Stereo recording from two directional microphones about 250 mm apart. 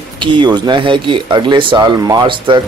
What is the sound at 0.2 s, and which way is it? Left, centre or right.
Speech, centre.